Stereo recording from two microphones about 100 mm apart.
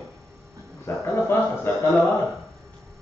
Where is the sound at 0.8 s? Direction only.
25° left (ahead or behind).